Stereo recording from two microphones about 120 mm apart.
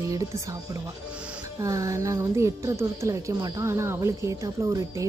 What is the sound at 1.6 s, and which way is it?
Speech, 25° right (ahead or behind).